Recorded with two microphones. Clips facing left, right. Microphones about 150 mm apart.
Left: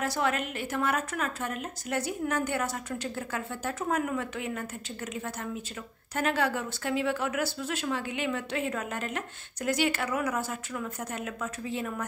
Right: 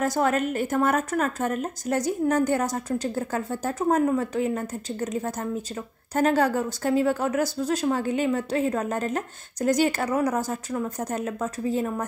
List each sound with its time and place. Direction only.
0.0 s speech: 45° right (ahead or behind)